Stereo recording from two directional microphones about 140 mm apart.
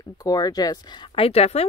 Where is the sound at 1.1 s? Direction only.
45° left (ahead or behind).